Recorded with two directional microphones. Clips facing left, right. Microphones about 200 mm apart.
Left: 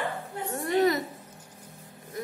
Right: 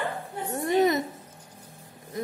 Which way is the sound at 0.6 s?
20° right (ahead or behind).